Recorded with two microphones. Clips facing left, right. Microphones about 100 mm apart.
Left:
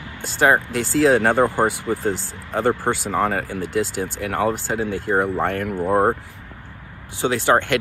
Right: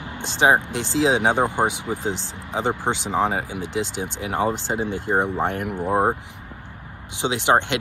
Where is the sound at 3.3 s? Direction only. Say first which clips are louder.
Left 2 dB; 60° left (ahead or behind).